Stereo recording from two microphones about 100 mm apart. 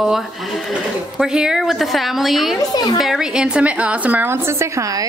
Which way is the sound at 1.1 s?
5° right (ahead or behind).